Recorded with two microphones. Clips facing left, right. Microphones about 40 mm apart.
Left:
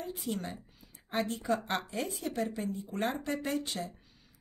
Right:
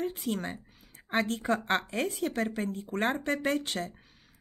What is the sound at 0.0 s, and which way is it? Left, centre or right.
A woman's voice, right.